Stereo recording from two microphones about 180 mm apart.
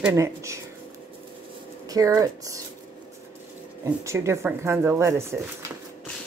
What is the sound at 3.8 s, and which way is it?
Speech, 15° right (ahead or behind).